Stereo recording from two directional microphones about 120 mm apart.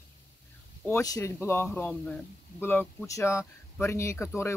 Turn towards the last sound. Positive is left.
turn(degrees=20)  # may be behind; listen again after turning